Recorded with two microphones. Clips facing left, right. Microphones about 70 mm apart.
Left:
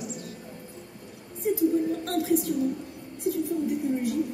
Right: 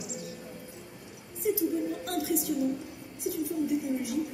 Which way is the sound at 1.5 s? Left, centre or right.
Left.